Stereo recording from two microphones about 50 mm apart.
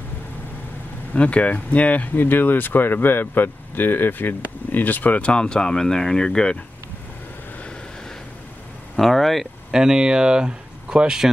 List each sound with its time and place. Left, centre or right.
1.1 s speech: left
5.2 s speech: centre
8.9 s speech: centre
9.7 s speech: centre